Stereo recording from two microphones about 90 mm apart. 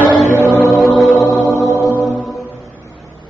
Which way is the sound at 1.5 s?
35° right (ahead or behind).